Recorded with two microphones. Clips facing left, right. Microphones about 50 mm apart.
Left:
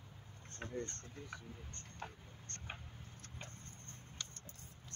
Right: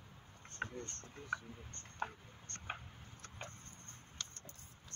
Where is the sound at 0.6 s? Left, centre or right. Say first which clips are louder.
Right 4 dB; right.